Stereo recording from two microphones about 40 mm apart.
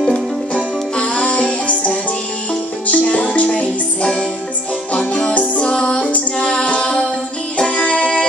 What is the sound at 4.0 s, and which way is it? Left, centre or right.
Music, left.